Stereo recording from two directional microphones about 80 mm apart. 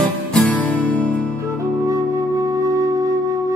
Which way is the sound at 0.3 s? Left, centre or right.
Centre.